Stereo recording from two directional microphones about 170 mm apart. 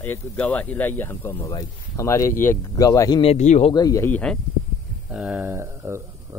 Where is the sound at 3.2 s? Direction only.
40° left (ahead or behind).